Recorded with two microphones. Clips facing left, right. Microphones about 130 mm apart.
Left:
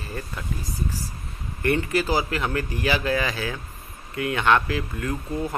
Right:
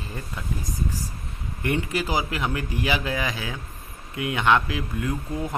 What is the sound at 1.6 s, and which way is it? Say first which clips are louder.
Speech: left 3 dB; 15° right (ahead or behind).